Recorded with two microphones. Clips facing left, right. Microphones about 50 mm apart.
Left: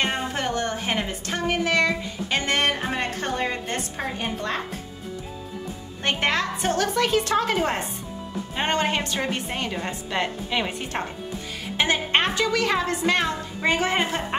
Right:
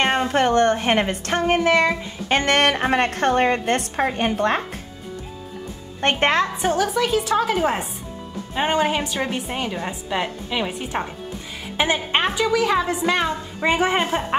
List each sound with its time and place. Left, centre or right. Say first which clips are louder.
0.0 s a woman's voice: right 7 dB; right
2.2 s a woman's voice: right 6 dB; right
5.9 s speech: right 5 dB; right
6.6 s a woman's voice: right 2 dB; centre
11.7 s a woman's voice: right 1 dB; centre